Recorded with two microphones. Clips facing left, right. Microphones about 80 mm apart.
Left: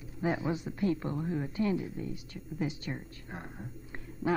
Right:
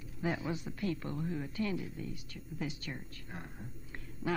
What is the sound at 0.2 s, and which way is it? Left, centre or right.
A woman's voice, left.